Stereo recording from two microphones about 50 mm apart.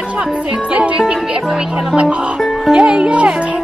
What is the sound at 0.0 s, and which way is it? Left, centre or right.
Speech, right.